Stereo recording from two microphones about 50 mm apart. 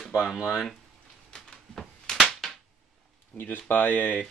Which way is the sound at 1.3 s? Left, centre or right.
Centre.